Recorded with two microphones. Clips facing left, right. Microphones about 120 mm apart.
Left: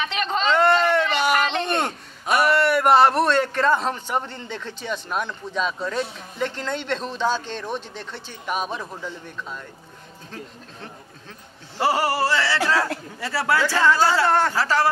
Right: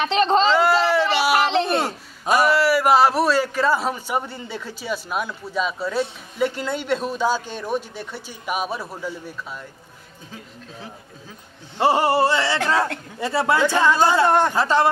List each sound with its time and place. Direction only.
0.0 s speech: 35° right (ahead or behind)
0.5 s a sound: 5° right (ahead or behind)
2.3 s a man's voice: centre (ahead or behind)
11.8 s speech: 25° right (ahead or behind)